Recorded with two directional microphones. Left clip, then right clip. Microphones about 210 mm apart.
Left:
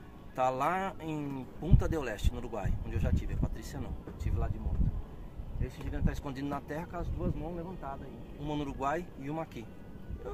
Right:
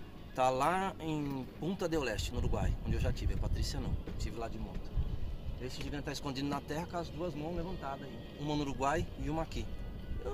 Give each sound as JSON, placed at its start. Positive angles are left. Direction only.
{"t": 0.4, "sound": "speech", "side_deg": 15}
{"t": 5.6, "sound": "speech", "side_deg": 15}